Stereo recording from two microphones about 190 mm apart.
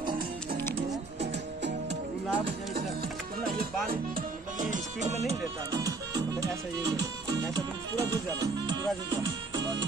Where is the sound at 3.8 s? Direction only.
50° right (ahead or behind).